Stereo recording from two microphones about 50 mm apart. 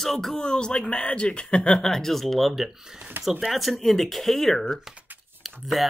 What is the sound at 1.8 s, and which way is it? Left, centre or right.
Speech, centre.